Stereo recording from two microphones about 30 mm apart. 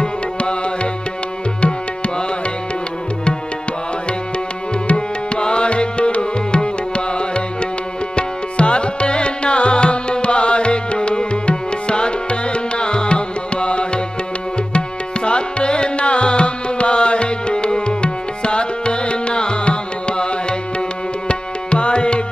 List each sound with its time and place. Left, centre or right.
0.0 s music: left
4.9 s music: left
8.2 s music: left
15.2 s music: left
21.3 s tabla: left